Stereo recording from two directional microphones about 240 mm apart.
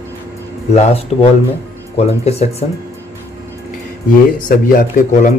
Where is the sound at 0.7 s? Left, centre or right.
Left.